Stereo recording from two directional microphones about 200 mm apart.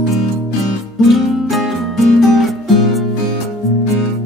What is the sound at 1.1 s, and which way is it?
Music, centre (ahead or behind).